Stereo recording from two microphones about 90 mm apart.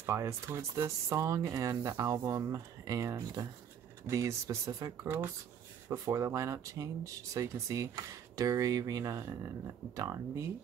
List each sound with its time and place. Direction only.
0.0 s speech: 30° right (ahead or behind)
5.0 s speech: 20° right (ahead or behind)
5.9 s speech: 40° right (ahead or behind)